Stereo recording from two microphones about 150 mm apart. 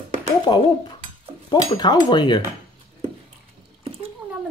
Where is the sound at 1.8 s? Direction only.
30° left (ahead or behind).